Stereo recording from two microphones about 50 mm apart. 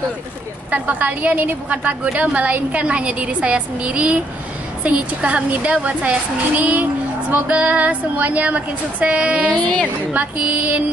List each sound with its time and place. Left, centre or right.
0.7 s a woman's voice: right